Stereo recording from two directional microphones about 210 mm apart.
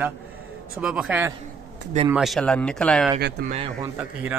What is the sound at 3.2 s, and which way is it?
Speech, 50° right (ahead or behind).